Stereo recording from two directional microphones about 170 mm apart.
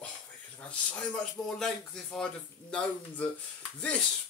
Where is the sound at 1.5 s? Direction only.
5° left (ahead or behind).